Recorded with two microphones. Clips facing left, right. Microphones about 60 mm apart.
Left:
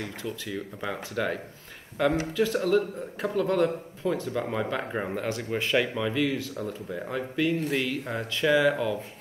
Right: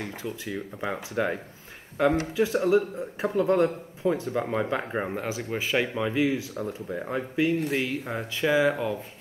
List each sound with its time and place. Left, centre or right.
0.0 s speech: centre
3.3 s speech: right; by 5.9 s centre
5.9 s speech: centre